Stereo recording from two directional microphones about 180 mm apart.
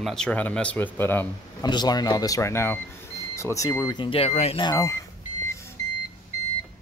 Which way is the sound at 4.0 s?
30° left (ahead or behind).